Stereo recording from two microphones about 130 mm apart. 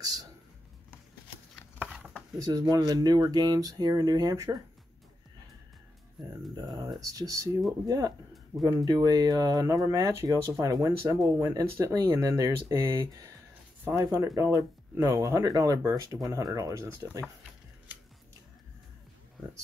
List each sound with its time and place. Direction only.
1.8 s dishes: 10° right (ahead or behind)
2.3 s speech: 25° right (ahead or behind)
6.5 s speech: 30° right (ahead or behind)